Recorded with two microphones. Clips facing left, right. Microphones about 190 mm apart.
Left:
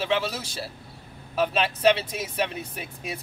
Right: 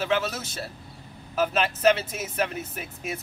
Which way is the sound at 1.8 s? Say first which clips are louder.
Even; 30° left (ahead or behind).